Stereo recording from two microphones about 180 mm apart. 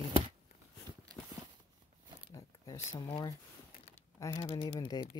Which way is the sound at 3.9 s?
20° left (ahead or behind).